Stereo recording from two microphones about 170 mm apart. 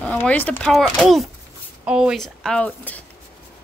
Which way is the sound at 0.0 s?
10° left (ahead or behind).